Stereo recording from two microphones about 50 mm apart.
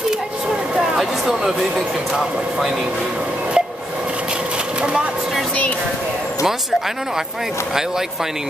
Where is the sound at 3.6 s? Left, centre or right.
Centre.